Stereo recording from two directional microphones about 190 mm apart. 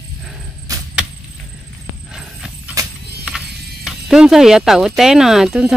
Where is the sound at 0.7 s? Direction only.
20° right (ahead or behind).